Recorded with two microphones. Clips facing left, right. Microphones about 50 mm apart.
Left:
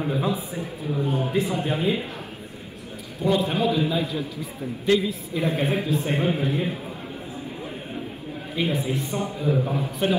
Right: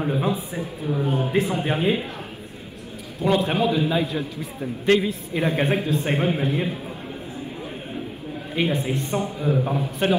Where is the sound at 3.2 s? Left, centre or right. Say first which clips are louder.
Right 1 dB; right.